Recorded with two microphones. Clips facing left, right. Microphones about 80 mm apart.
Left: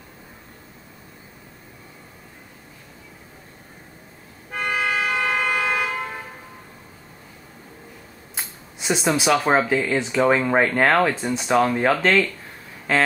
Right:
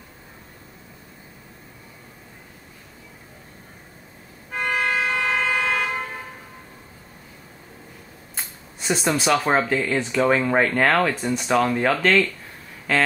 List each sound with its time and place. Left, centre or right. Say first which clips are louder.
4.6 s vehicle: even; centre
8.4 s speech: left 1 dB; centre